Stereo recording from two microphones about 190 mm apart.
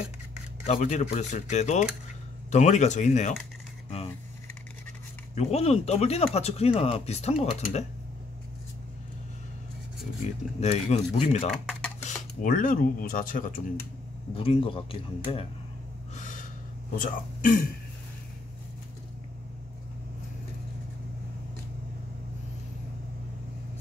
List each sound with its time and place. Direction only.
0.7 s speech: 35° left (ahead or behind)
5.3 s speech: 35° left (ahead or behind)
10.6 s speech: 35° left (ahead or behind)
14.3 s speech: 30° left (ahead or behind)
16.2 s gasp: 40° left (ahead or behind)
16.9 s speech: 45° left (ahead or behind)